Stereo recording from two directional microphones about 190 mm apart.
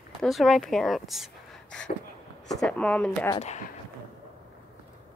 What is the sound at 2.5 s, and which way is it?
Speech, 5° left (ahead or behind).